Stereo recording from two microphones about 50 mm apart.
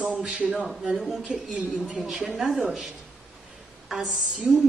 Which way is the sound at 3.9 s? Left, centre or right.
Centre.